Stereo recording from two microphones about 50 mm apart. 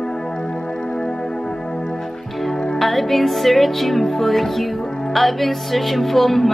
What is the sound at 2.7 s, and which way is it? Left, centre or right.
Music, centre.